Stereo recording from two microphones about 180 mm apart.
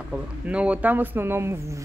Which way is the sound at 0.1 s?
5° right (ahead or behind).